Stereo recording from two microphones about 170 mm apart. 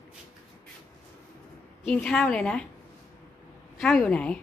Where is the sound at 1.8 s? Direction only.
5° left (ahead or behind).